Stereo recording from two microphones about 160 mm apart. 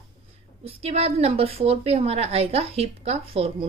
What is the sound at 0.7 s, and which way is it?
A woman's voice, 40° right (ahead or behind).